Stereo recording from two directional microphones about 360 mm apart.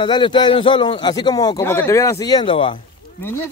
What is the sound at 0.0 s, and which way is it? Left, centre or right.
A man's voice, centre.